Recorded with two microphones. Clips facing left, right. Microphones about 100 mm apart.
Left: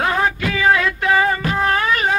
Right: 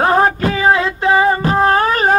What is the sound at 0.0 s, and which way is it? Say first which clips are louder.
Music: right 6 dB; 35° right (ahead or behind).